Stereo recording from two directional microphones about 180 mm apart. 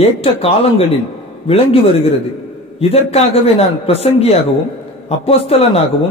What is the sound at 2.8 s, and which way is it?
A man's voice, 35° left (ahead or behind).